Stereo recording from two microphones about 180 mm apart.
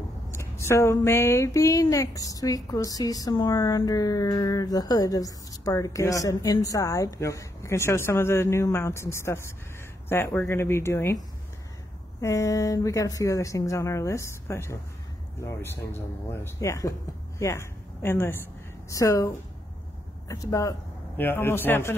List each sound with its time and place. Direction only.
0.3 s a woman's voice: 15° left (ahead or behind)